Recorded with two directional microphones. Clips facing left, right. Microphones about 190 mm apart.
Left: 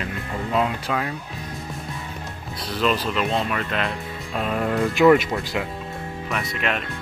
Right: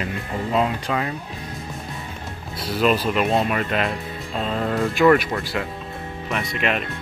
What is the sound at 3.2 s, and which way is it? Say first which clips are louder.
Speech: right 3 dB; 45° right (ahead or behind).